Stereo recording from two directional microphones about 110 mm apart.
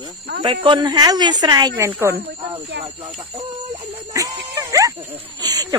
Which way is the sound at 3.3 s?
65° right (ahead or behind).